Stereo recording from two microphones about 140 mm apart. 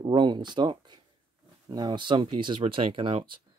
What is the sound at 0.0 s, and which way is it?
Speech, 35° right (ahead or behind).